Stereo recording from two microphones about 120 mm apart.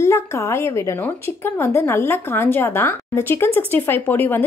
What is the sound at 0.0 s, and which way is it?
A woman's voice, 20° left (ahead or behind).